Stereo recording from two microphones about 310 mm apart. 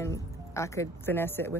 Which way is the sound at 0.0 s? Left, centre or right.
Centre.